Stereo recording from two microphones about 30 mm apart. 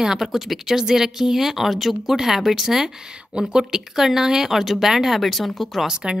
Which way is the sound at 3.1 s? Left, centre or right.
Right.